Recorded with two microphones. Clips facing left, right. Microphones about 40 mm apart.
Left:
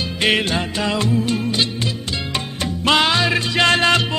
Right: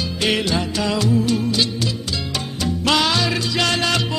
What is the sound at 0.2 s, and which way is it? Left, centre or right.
Music, left.